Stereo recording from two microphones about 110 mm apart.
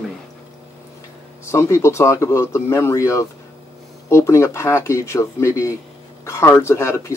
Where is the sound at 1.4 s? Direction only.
25° left (ahead or behind).